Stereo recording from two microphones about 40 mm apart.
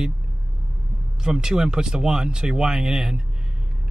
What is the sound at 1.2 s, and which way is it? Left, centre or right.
Speech, centre.